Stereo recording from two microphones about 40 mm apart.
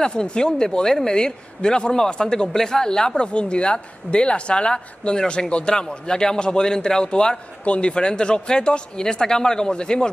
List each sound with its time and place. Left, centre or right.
0.0 s speech: left